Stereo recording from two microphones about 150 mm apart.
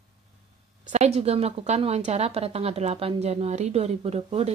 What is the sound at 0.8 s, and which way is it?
Speech, 50° right (ahead or behind).